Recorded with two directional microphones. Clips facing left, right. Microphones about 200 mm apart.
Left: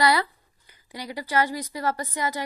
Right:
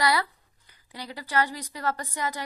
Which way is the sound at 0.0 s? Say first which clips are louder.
Left 3 dB; 25° left (ahead or behind).